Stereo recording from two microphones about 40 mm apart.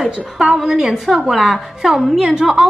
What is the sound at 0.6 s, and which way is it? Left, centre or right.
A woman's voice, centre.